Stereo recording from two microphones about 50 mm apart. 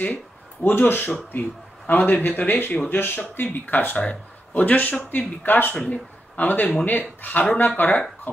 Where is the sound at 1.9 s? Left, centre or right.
Left.